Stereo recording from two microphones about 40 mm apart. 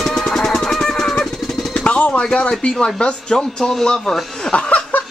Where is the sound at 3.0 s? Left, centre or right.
Left.